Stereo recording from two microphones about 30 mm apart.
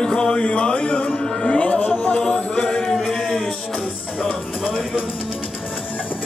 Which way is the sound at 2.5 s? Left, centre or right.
Left.